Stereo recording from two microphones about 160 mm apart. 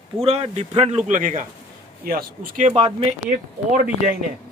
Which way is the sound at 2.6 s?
40° right (ahead or behind).